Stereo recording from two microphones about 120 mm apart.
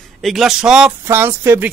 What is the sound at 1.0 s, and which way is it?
Speech, 20° right (ahead or behind).